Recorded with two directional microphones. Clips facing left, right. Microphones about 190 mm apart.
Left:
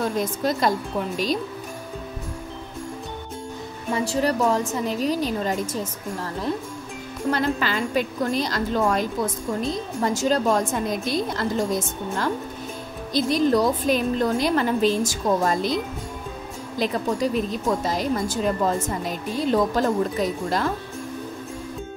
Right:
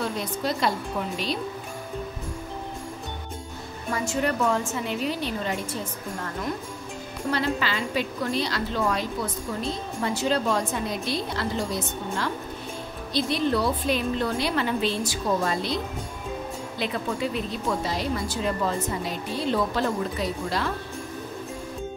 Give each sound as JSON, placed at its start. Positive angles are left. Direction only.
{"t": 0.2, "sound": "speech", "side_deg": 45}
{"t": 3.9, "sound": "a woman's voice", "side_deg": 35}
{"t": 7.2, "sound": "speech", "side_deg": 50}
{"t": 13.1, "sound": "speech", "side_deg": 45}
{"t": 16.7, "sound": "speech", "side_deg": 40}